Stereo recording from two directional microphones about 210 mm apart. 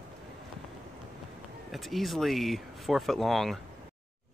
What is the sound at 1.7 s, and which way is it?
Speech, centre (ahead or behind).